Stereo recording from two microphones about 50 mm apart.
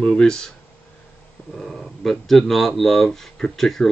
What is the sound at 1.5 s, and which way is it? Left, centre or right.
Speech, centre.